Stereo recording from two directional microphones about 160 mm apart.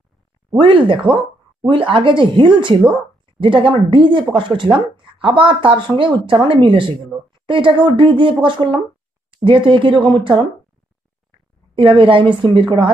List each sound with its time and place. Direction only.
0.6 s speech: 30° right (ahead or behind)
11.7 s speech: 35° right (ahead or behind)